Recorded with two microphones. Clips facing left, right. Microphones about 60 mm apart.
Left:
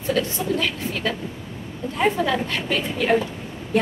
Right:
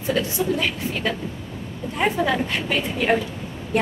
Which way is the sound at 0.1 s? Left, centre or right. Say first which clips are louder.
Even; centre.